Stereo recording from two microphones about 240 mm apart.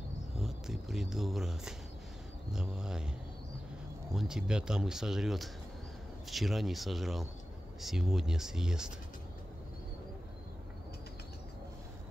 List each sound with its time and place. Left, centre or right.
0.4 s speech: centre
4.1 s speech: centre